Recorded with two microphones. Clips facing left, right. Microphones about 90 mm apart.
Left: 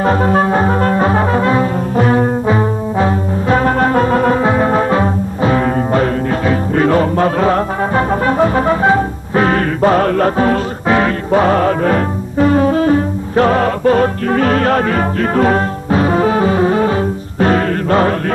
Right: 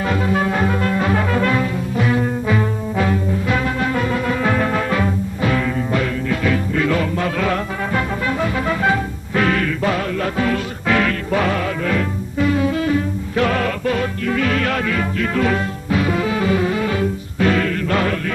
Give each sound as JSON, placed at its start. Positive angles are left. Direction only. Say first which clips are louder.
{"t": 0.0, "sound": "brass instrument", "louder": "left 6 dB", "side_deg": 40}
{"t": 4.4, "sound": "music", "louder": "left 6 dB", "side_deg": 30}